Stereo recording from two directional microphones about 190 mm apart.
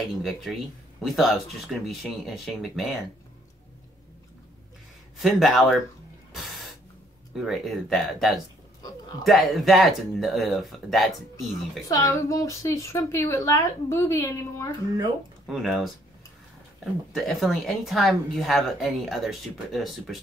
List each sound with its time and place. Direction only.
0.1 s a woman's voice: centre (ahead or behind)
5.2 s a woman's voice: centre (ahead or behind)
7.3 s a woman's voice: centre (ahead or behind)
11.9 s a woman's voice: 20° left (ahead or behind)
15.4 s a woman's voice: centre (ahead or behind)
17.1 s a woman's voice: centre (ahead or behind)